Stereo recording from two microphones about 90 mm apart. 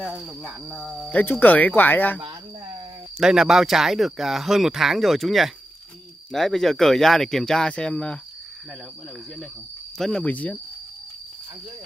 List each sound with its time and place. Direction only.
0.0 s speech: 5° right (ahead or behind)
0.7 s speech: 5° left (ahead or behind)
1.1 s speech: 20° left (ahead or behind)
3.2 s speech: 5° right (ahead or behind); by 8.2 s 10° left (ahead or behind)
9.9 s speech: 5° left (ahead or behind)
10.2 s speech: 15° left (ahead or behind)